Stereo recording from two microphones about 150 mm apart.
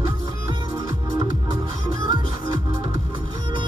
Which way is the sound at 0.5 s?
30° right (ahead or behind).